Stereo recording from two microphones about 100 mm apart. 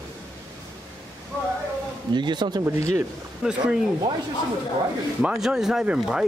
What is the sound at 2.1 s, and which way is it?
Speech, 50° right (ahead or behind).